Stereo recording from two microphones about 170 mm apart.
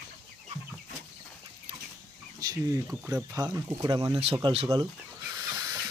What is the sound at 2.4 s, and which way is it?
Speech, 20° right (ahead or behind).